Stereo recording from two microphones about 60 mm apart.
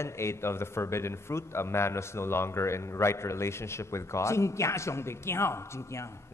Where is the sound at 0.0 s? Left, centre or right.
Left.